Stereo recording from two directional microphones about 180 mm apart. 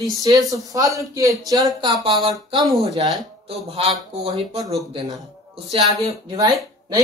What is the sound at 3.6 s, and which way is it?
Speech, 30° right (ahead or behind).